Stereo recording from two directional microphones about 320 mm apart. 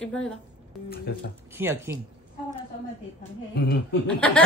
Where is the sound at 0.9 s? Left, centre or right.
Left.